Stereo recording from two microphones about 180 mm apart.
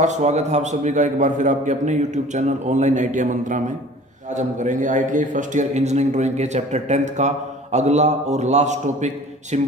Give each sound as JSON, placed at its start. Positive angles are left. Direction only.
{"t": 0.0, "sound": "a man's voice", "side_deg": -40}